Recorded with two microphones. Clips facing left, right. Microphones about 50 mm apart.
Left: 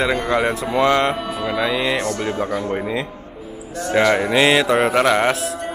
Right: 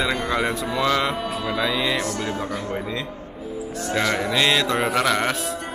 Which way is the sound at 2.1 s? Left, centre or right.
Left.